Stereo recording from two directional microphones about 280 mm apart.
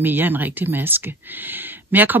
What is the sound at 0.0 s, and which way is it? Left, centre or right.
A woman's voice, centre.